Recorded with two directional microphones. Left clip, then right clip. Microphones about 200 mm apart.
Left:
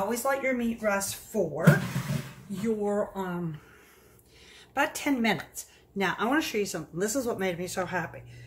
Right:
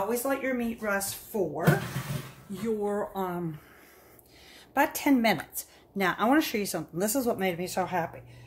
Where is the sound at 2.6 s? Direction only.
25° right (ahead or behind).